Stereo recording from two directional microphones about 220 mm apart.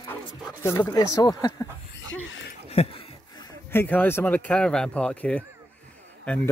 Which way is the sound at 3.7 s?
10° left (ahead or behind).